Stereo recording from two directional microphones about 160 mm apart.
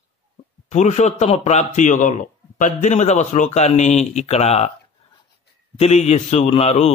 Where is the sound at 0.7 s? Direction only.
45° left (ahead or behind).